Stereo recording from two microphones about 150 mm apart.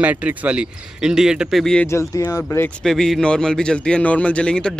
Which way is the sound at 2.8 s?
Centre (ahead or behind).